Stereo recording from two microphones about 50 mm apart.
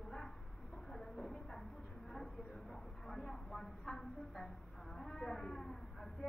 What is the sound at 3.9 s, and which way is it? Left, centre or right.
A woman's voice, centre.